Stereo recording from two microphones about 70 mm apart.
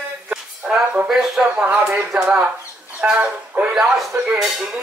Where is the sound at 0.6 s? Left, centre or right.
Centre.